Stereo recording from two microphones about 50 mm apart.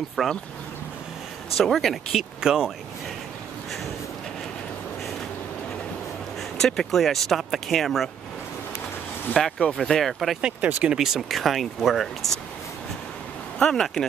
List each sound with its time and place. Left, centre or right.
0.2 s speech: centre
1.6 s speech: centre
2.4 s speech: centre
6.6 s speech: centre
9.4 s speech: centre
9.8 s speech: centre
10.6 s speech: right
10.9 s speech: centre
13.6 s speech: centre